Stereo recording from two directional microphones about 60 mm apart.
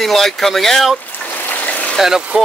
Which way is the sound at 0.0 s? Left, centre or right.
Centre.